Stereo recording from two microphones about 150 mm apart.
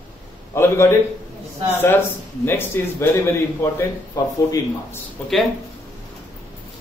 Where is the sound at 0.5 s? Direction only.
15° left (ahead or behind).